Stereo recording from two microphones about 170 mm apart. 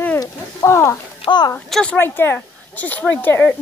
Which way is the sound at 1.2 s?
25° left (ahead or behind).